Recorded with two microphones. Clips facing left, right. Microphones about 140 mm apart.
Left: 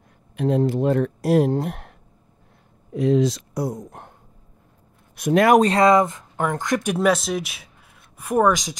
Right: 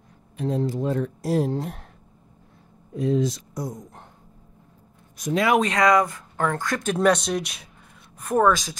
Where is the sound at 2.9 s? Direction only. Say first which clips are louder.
Left 4 dB; 80° left; by 4.1 s 65° left (ahead or behind).